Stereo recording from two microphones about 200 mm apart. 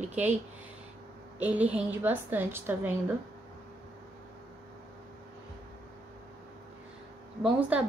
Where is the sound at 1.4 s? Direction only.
5° right (ahead or behind).